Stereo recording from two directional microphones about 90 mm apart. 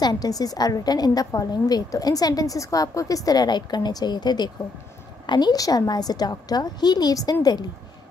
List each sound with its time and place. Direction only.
0.0 s a woman's voice: 45° left (ahead or behind)